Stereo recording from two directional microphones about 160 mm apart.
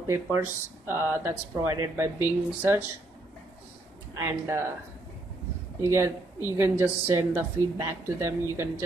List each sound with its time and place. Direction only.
0.0 s speech: 15° right (ahead or behind)
4.1 s speech: 15° right (ahead or behind)
5.8 s speech: 20° right (ahead or behind)